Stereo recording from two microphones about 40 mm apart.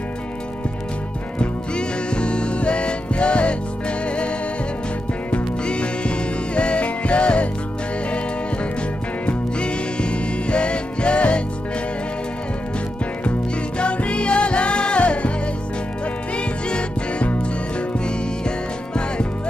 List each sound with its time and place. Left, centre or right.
1.4 s music: left
5.3 s music: left
9.2 s music: left
13.2 s music: left
16.3 s music: left